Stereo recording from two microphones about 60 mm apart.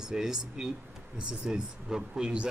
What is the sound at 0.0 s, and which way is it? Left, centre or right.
Speech, centre.